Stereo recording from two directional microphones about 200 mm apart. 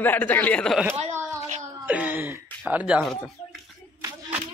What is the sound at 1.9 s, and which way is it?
Speech, 10° right (ahead or behind).